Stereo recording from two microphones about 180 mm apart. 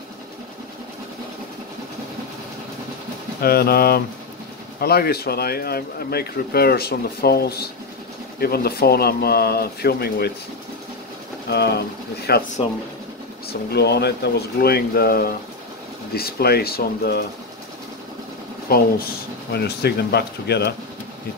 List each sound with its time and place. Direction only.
3.3 s speech: 60° left (ahead or behind)
11.4 s speech: 65° left (ahead or behind)
13.5 s speech: 65° left (ahead or behind)
18.7 s speech: 55° left (ahead or behind)